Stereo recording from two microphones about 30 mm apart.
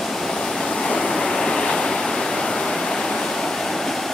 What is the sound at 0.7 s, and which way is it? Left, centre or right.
Waves, left.